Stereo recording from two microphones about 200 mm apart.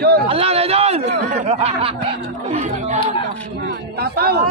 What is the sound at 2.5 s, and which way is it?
Speech, 40° right (ahead or behind).